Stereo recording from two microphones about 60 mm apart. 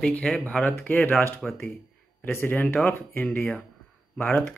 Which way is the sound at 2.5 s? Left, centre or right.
Left.